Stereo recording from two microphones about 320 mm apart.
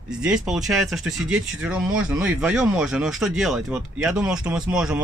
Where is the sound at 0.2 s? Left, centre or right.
Centre.